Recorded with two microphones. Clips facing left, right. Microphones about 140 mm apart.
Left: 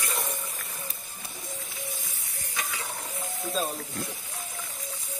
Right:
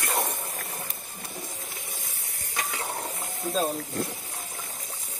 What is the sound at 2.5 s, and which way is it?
Hiss, 50° right (ahead or behind).